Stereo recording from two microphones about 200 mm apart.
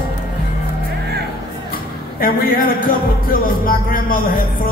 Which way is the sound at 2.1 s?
45° left (ahead or behind).